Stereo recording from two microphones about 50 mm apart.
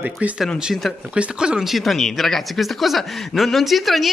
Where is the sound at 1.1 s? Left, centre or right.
Centre.